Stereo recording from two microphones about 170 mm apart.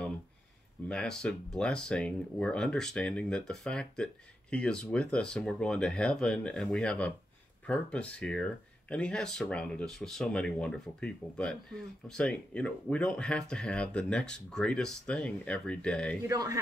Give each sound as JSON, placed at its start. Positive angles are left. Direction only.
{"t": 0.8, "sound": "speech", "side_deg": 5}
{"t": 16.3, "sound": "speech", "side_deg": -20}